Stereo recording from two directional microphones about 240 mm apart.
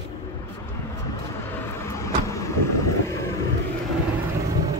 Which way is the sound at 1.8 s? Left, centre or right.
Centre.